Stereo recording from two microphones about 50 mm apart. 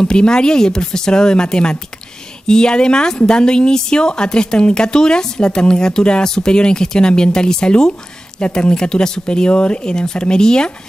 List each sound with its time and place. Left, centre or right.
0.0 s a woman's voice: centre